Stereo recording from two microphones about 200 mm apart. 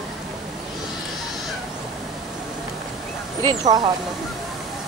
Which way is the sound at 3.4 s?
20° right (ahead or behind).